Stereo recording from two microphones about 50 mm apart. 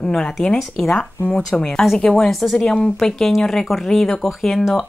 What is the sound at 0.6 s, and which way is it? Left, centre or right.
Speech, centre.